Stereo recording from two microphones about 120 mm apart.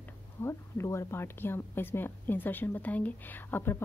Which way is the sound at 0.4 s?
25° left (ahead or behind).